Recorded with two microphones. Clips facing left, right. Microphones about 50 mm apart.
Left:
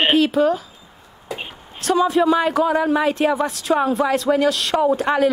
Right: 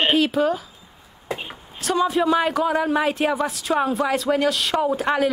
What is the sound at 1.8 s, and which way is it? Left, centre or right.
A woman's voice, centre.